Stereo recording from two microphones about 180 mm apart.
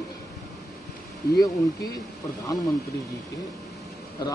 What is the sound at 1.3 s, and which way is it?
Speech, 20° left (ahead or behind).